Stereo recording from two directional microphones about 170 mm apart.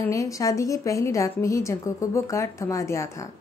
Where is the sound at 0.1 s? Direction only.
20° left (ahead or behind).